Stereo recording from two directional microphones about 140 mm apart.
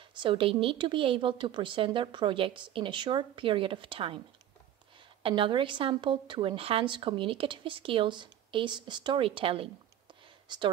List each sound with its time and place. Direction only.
0.2 s a woman's voice: 40° right (ahead or behind)
5.2 s a woman's voice: 35° right (ahead or behind)